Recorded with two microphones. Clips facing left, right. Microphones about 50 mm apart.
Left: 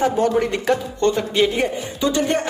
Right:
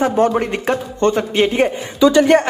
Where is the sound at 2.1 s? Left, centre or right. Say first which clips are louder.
Right 8 dB; right.